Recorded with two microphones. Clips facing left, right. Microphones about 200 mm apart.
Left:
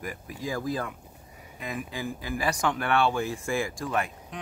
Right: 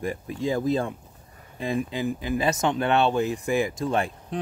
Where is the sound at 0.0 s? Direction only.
25° right (ahead or behind).